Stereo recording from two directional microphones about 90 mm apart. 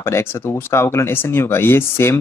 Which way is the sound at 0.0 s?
30° left (ahead or behind).